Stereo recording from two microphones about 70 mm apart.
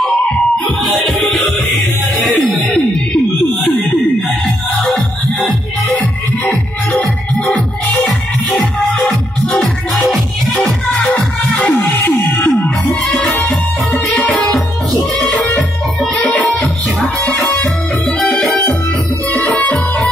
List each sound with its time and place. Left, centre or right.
0.8 s music: centre
4.9 s music: centre
7.3 s music: left
8.5 s music: centre
12.1 s music: left; by 15.4 s centre
17.0 s music: left
18.0 s music: centre
19.4 s music: left